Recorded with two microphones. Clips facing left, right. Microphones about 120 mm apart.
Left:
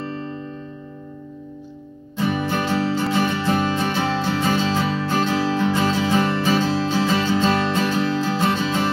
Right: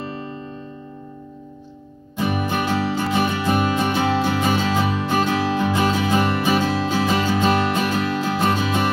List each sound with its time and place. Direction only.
2.1 s music: 15° right (ahead or behind)